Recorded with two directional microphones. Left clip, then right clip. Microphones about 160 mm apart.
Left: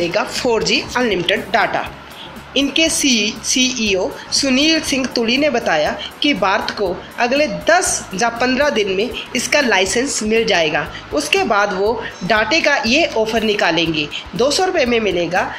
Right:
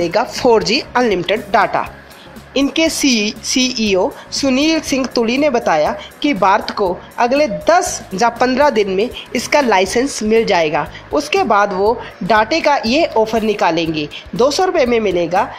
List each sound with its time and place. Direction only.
0.0 s a woman's voice: 45° right (ahead or behind)